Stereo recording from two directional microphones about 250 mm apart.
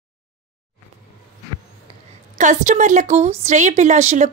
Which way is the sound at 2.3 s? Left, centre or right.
Right.